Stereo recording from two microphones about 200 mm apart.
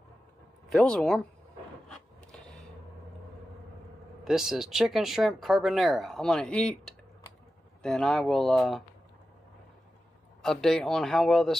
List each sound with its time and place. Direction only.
0.7 s speech: 5° left (ahead or behind)
4.2 s speech: centre (ahead or behind)
10.4 s speech: centre (ahead or behind)